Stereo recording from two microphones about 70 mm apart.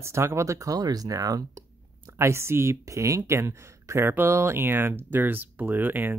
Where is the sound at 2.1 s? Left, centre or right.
Right.